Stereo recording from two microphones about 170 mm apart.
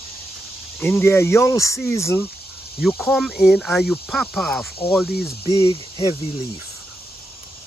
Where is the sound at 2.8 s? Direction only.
Centre (ahead or behind).